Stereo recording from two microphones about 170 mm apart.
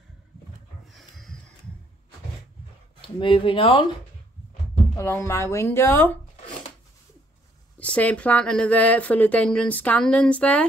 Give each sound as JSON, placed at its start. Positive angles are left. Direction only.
{"t": 0.9, "sound": "a sound", "side_deg": 0}
{"t": 3.0, "sound": "speech", "side_deg": 30}
{"t": 4.9, "sound": "speech", "side_deg": 15}
{"t": 7.8, "sound": "speech", "side_deg": 5}